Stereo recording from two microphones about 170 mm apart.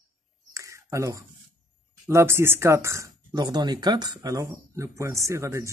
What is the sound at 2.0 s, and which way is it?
Speech, 15° right (ahead or behind).